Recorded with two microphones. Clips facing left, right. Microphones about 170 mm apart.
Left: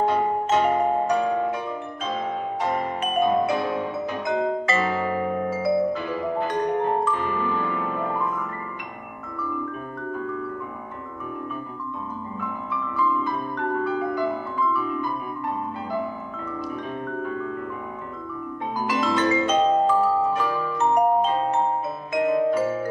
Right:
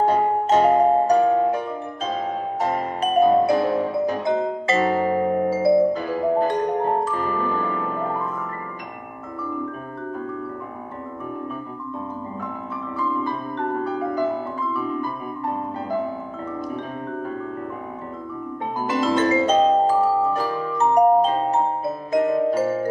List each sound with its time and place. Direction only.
0.0 s music: 40° right (ahead or behind)
12.9 s music: 35° right (ahead or behind)
17.1 s music: 40° right (ahead or behind)
19.1 s music: 35° right (ahead or behind)